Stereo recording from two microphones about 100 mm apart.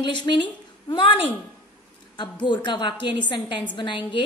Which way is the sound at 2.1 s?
50° left (ahead or behind).